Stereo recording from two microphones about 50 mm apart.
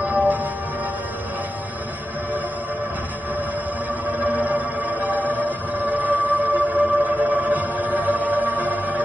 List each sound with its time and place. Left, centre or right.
0.0 s music: right
4.2 s music: right